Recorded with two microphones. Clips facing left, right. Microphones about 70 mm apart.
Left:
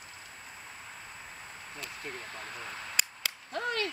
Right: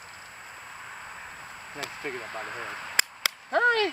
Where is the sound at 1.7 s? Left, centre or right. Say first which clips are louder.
Right 7 dB; right.